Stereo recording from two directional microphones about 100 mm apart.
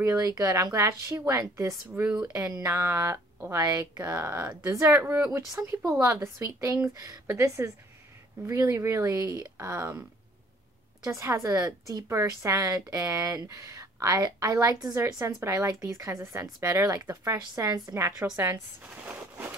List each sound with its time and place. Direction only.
0.0 s a woman's voice: 35° right (ahead or behind)
2.0 s speech: 10° right (ahead or behind)
2.3 s speech: 35° right (ahead or behind)
3.6 s a woman's voice: 40° right (ahead or behind)
4.2 s a woman's voice: 20° right (ahead or behind)
11.1 s a woman's voice: 30° right (ahead or behind)
18.2 s speech: 20° right (ahead or behind)
19.0 s a sound: 20° right (ahead or behind)